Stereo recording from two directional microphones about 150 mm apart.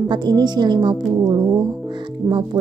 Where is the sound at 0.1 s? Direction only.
30° right (ahead or behind).